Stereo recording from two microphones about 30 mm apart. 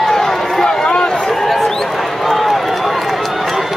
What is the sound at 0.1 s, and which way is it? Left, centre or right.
Run, centre.